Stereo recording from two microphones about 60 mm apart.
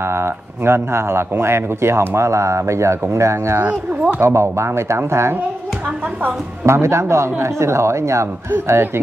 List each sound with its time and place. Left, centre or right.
0.0 s speech: right
3.6 s speech: right
4.2 s speech: right
6.6 s speech: right